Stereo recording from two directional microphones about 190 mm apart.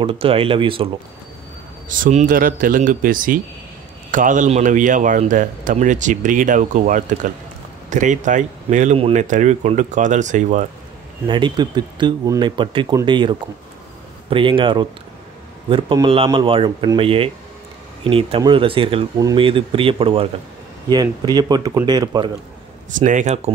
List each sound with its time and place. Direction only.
0.0 s speech: 30° right (ahead or behind)
1.9 s speech: 40° right (ahead or behind)
11.2 s speech: 25° right (ahead or behind)
22.9 s speech: 40° right (ahead or behind)